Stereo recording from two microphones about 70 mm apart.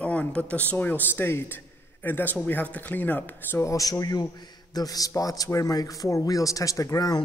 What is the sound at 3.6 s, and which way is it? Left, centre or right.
Speech, left.